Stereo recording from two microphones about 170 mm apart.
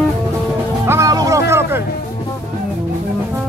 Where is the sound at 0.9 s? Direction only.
20° right (ahead or behind).